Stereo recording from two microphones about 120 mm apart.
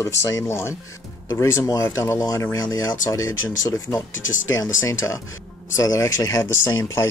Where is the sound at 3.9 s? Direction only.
20° left (ahead or behind).